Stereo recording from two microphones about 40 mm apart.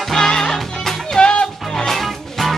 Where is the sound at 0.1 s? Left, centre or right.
Centre.